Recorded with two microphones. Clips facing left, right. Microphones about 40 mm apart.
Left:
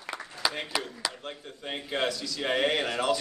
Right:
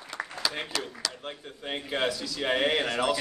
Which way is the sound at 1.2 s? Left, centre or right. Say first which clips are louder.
Right 1 dB; centre.